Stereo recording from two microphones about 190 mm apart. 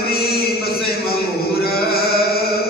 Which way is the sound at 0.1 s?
55° left (ahead or behind).